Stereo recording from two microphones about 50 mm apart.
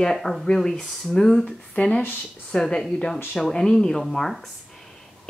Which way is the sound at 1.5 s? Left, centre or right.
Left.